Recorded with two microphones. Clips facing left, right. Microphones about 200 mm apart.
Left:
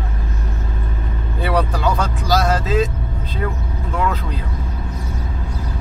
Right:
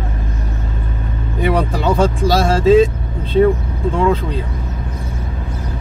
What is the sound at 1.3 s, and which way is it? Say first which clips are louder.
Speech: right 3 dB; 20° right (ahead or behind).